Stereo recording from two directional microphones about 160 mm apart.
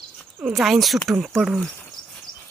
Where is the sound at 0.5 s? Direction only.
Centre (ahead or behind).